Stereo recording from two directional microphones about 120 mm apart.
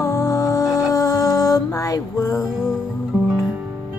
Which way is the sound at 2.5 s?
Centre (ahead or behind).